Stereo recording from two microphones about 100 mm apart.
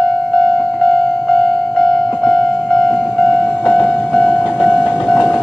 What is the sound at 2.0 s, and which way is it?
Train, centre (ahead or behind).